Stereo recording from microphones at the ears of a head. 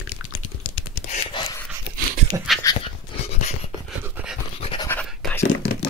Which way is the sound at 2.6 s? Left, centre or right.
Left.